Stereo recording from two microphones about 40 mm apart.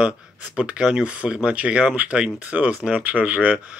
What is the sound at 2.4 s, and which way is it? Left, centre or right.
Speech, right.